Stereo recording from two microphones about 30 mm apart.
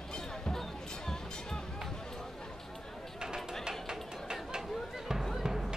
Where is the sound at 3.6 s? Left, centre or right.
Centre.